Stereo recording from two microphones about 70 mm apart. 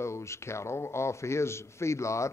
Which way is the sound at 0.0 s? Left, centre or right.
Left.